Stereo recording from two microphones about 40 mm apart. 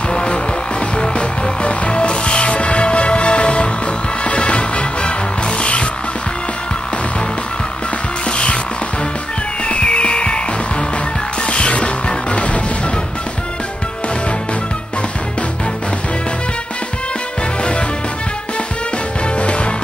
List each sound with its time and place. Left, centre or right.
0.1 s music: left
8.3 s music: left
9.7 s music: left
11.4 s music: left
19.3 s music: left